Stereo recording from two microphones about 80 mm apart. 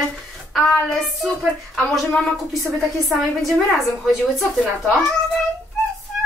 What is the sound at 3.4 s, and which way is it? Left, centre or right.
A woman's voice, centre.